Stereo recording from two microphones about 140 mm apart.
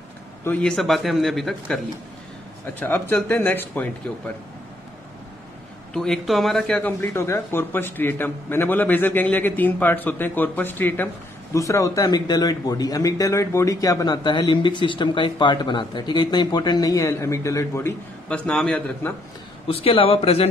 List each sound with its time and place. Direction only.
0.5 s a man's voice: 5° left (ahead or behind)
2.8 s speech: 15° left (ahead or behind)
5.9 s speech: 5° left (ahead or behind); by 18.4 s 20° left (ahead or behind)
18.5 s speech: 5° left (ahead or behind)
19.7 s speech: 40° left (ahead or behind)